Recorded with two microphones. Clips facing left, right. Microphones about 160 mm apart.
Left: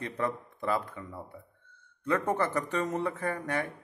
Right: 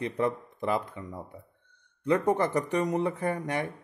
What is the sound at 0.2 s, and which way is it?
A man's voice, 20° right (ahead or behind).